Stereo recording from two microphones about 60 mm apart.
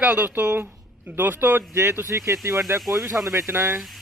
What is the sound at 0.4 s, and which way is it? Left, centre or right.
Speech, right.